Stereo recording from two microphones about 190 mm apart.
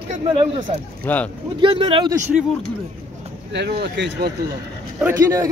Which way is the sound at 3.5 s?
60° right (ahead or behind).